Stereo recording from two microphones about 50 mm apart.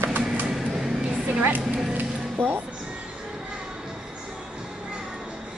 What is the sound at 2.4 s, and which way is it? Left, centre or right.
Music, right.